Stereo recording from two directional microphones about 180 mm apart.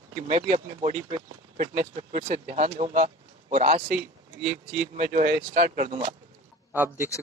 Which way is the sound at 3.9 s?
10° right (ahead or behind).